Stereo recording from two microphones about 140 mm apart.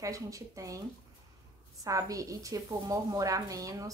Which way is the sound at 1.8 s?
25° right (ahead or behind).